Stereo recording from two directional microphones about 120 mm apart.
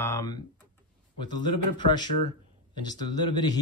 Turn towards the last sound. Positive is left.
turn(degrees=35)  # may be behind; listen again after turning